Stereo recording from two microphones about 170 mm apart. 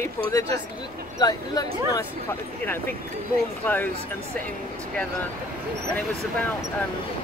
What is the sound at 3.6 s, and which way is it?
Speech, 10° left (ahead or behind).